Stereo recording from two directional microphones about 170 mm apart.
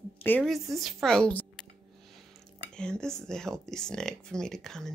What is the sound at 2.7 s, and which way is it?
Speech, 5° left (ahead or behind).